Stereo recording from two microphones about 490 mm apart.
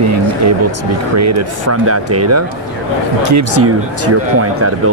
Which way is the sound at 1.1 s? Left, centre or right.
Right.